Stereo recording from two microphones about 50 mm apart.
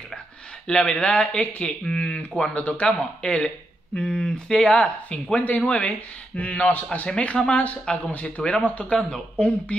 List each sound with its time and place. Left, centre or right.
0.7 s speech: centre